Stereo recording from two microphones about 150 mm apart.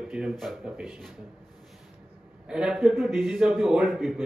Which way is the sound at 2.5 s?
5° right (ahead or behind).